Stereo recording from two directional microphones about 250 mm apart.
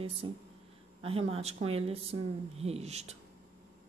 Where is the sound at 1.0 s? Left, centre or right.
Right.